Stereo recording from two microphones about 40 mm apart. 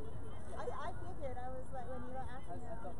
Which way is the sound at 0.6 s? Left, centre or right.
Centre.